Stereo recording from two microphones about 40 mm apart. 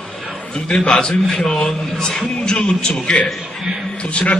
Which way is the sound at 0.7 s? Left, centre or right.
Centre.